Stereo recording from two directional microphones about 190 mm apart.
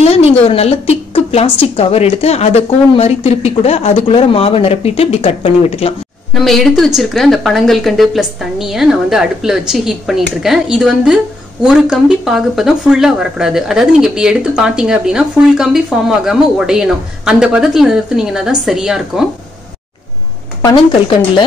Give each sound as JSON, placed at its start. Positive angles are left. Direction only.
{"t": 0.0, "sound": "a woman's voice", "side_deg": 30}
{"t": 6.4, "sound": "speech", "side_deg": 0}